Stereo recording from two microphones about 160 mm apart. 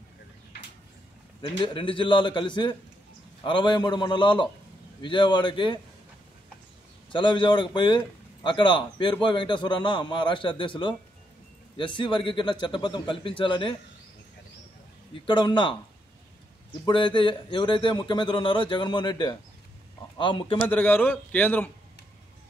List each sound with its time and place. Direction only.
1.6 s a man's voice: 30° left (ahead or behind)
7.1 s a man's voice: 30° left (ahead or behind)
15.2 s a man's voice: 30° left (ahead or behind)
16.8 s speech: 30° left (ahead or behind)
20.6 s a man's voice: 10° left (ahead or behind)